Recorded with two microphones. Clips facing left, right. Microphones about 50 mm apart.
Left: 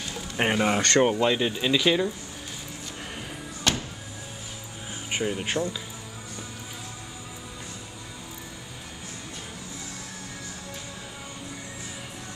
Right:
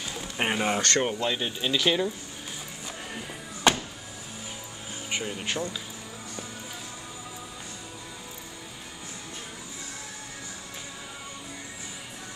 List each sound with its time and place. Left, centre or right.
0.4 s speech: centre
3.7 s music: centre
5.1 s speech: centre